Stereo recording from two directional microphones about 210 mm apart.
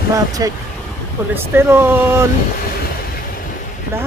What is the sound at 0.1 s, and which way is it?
Speech, 15° right (ahead or behind).